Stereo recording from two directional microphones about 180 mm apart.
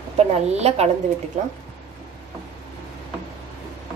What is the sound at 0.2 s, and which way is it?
Speech, 35° right (ahead or behind).